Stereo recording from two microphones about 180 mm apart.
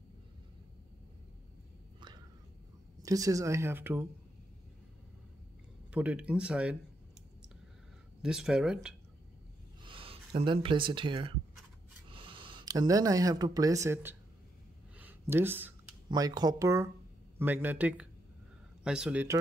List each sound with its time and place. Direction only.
3.0 s speech: 20° right (ahead or behind)
5.9 s speech: 5° right (ahead or behind)
8.2 s speech: 5° right (ahead or behind)
9.8 s speech: 30° right (ahead or behind); by 14.1 s 10° right (ahead or behind)
15.0 s a sound: 10° right (ahead or behind)
16.1 s speech: 20° right (ahead or behind)